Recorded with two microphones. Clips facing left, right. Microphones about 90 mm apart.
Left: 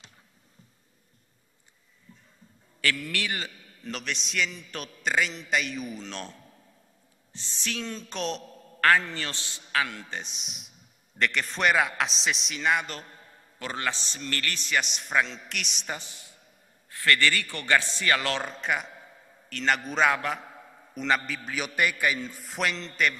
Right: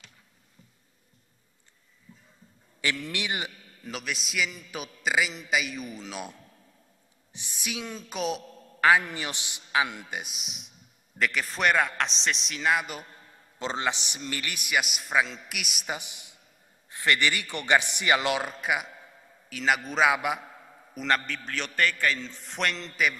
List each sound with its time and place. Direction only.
2.8 s a man's voice: 20° right (ahead or behind)
3.8 s a man's voice: 5° right (ahead or behind)
7.3 s a man's voice: 10° right (ahead or behind)
13.6 s speech: 20° right (ahead or behind)
20.9 s a man's voice: centre (ahead or behind)